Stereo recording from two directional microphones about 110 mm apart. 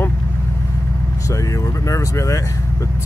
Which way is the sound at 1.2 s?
30° left (ahead or behind).